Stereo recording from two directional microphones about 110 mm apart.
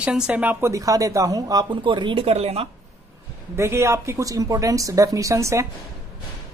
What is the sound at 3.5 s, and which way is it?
Speech, 25° right (ahead or behind).